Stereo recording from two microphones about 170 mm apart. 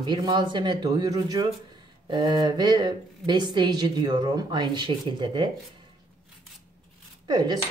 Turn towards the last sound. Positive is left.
turn(degrees=-25)  # may be behind; listen again after turning